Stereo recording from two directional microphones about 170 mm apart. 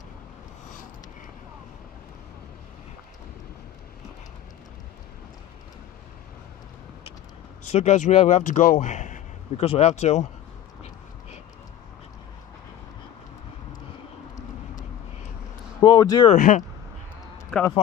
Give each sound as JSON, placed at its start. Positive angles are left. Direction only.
{"t": 7.6, "sound": "a man's voice", "side_deg": 40}
{"t": 15.8, "sound": "speech", "side_deg": 25}
{"t": 16.3, "sound": "speech", "side_deg": 45}